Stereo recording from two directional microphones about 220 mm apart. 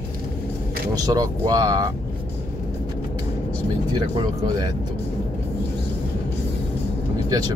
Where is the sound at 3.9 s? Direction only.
20° right (ahead or behind).